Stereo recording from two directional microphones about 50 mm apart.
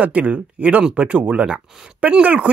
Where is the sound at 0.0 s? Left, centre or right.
Right.